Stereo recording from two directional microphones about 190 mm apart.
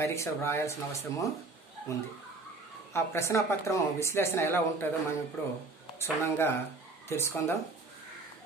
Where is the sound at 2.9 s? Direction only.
15° left (ahead or behind).